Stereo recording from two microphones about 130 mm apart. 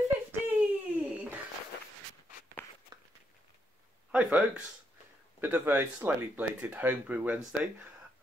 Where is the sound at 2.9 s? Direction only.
35° right (ahead or behind).